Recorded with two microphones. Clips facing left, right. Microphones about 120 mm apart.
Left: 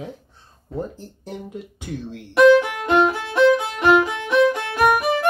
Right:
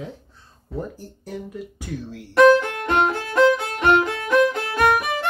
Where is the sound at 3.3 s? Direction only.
Centre (ahead or behind).